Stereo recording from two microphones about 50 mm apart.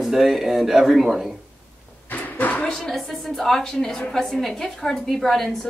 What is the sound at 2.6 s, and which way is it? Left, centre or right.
A woman's voice, centre.